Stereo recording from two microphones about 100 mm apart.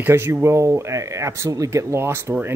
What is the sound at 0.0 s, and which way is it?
Speech, 25° right (ahead or behind).